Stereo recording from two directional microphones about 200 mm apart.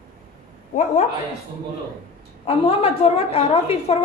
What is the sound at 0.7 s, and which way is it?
Speech, 35° left (ahead or behind).